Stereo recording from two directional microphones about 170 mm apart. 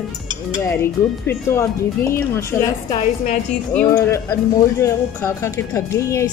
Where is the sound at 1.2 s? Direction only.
15° left (ahead or behind).